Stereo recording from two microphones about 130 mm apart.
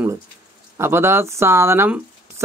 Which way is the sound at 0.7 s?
20° right (ahead or behind).